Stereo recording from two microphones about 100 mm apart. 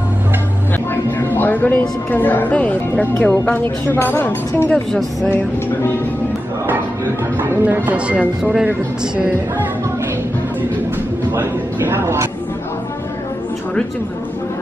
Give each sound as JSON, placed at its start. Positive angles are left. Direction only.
{"t": 1.1, "sound": "a woman's voice", "side_deg": 20}
{"t": 7.3, "sound": "speech", "side_deg": -20}
{"t": 11.3, "sound": "a man's voice", "side_deg": -20}